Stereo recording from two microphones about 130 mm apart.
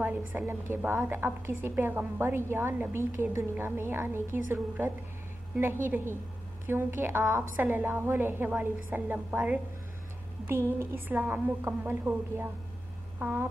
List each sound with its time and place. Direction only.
0.0 s a woman's voice: 15° right (ahead or behind)
10.8 s a woman's voice: 15° right (ahead or behind)